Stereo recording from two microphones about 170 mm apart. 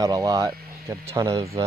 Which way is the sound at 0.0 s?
20° right (ahead or behind).